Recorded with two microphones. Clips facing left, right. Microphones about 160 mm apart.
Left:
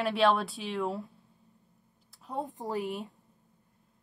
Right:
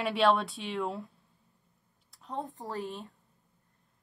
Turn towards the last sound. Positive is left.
turn(degrees=15)  # may be behind; listen again after turning